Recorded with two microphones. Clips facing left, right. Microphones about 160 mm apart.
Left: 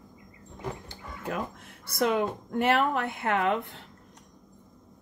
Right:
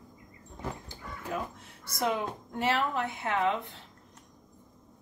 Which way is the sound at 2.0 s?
60° left (ahead or behind).